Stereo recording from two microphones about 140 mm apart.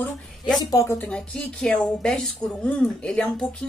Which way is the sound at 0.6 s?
25° left (ahead or behind).